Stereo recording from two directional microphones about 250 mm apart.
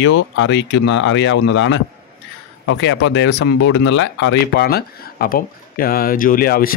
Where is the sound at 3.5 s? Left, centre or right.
Left.